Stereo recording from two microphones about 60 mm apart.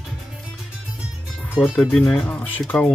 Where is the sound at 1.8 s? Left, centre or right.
Centre.